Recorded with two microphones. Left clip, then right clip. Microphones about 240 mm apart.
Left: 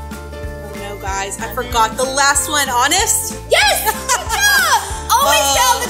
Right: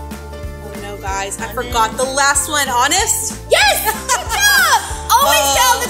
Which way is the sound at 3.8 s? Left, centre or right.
Centre.